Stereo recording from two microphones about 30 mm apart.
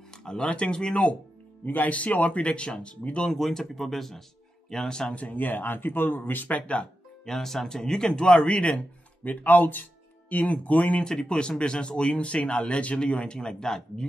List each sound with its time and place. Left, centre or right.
0.1 s a sound: left
0.4 s speech: left
1.9 s speech: left
3.3 s speech: centre
4.6 s speech: left
5.3 s speech: left
6.6 s speech: left
7.2 s speech: centre; by 8.5 s left
8.5 s speech: left
8.7 s speech: left
10.3 s speech: left
11.1 s speech: left
13.7 s speech: centre